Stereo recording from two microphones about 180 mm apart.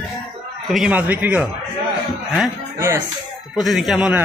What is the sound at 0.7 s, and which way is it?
Speech, 5° right (ahead or behind).